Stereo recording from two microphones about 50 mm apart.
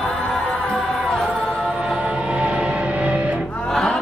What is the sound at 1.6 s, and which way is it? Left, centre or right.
Music, centre.